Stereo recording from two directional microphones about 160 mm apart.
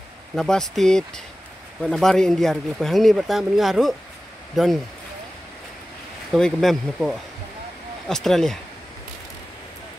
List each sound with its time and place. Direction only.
0.4 s speech: 5° left (ahead or behind)
6.3 s speech: centre (ahead or behind)